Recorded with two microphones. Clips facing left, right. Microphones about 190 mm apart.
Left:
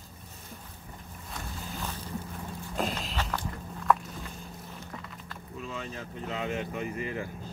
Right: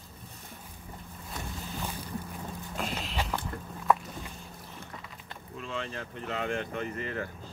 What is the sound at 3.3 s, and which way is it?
Walk, 10° right (ahead or behind).